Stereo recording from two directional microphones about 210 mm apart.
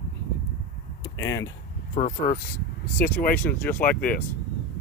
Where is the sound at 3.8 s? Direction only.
45° left (ahead or behind).